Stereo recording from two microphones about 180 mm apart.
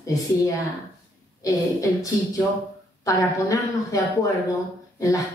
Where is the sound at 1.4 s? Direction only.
20° left (ahead or behind).